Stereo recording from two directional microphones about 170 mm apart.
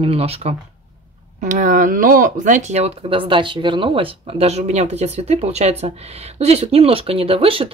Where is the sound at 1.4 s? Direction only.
50° right (ahead or behind).